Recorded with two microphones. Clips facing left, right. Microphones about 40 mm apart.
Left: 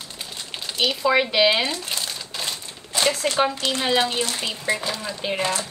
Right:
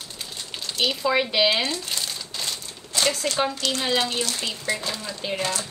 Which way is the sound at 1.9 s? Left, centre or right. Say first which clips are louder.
Left 1 dB; left.